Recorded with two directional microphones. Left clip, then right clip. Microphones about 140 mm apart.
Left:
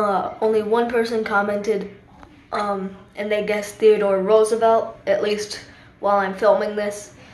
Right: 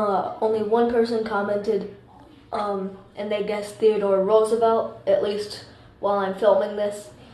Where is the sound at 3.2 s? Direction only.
10° left (ahead or behind).